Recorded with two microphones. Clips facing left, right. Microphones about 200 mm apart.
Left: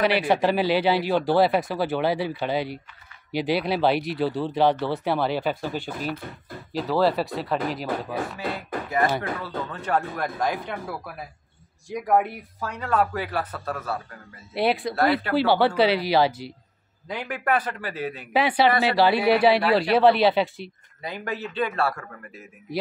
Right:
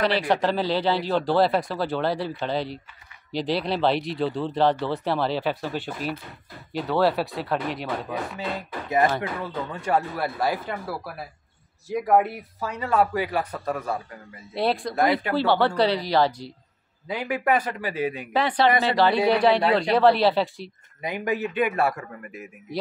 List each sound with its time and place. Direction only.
0.0 s speech: 5° left (ahead or behind)
9.4 s speech: 10° right (ahead or behind)
14.5 s speech: 5° left (ahead or behind)
15.0 s speech: 15° right (ahead or behind)
15.3 s speech: 5° left (ahead or behind)
17.1 s speech: 10° right (ahead or behind)
18.3 s speech: 10° left (ahead or behind)
18.7 s speech: 15° right (ahead or behind)
19.3 s speech: 5° left (ahead or behind)
21.0 s speech: 15° right (ahead or behind)